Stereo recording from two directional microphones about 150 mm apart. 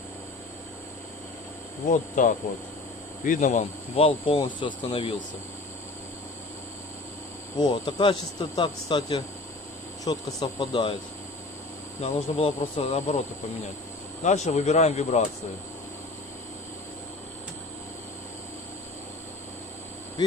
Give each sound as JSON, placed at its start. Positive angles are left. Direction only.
{"t": 1.9, "sound": "speech", "side_deg": 60}
{"t": 3.9, "sound": "speech", "side_deg": 40}
{"t": 7.5, "sound": "speech", "side_deg": 30}
{"t": 12.0, "sound": "speech", "side_deg": 45}
{"t": 14.2, "sound": "speech", "side_deg": 50}